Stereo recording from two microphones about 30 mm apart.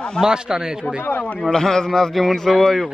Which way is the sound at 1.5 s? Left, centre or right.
Centre.